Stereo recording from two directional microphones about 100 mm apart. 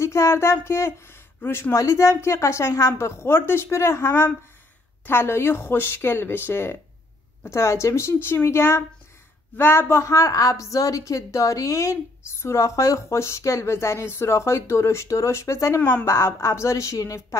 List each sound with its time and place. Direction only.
0.0 s a woman's voice: 30° left (ahead or behind)